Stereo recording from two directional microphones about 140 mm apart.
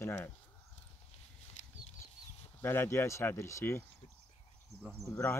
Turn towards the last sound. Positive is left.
turn(degrees=20)  # may be behind; listen again after turning